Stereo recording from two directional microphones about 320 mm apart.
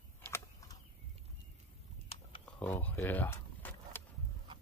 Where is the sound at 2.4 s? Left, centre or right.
Centre.